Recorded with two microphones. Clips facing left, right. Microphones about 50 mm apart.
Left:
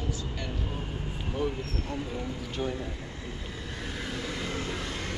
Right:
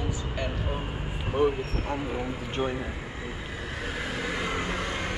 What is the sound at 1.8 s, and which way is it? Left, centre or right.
Vehicle, right.